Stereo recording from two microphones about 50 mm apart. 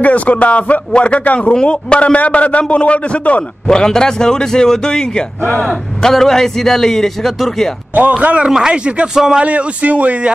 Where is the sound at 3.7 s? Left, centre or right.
Centre.